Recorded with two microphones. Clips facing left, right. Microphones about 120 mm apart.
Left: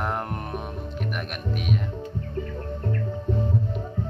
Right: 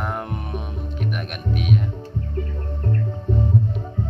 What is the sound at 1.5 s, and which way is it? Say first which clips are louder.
Music: right 5 dB; centre (ahead or behind).